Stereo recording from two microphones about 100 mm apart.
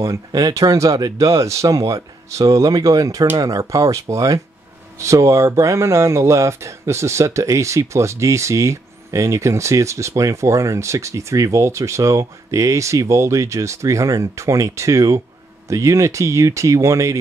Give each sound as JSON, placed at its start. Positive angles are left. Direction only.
{"t": 0.0, "sound": "speech", "side_deg": -35}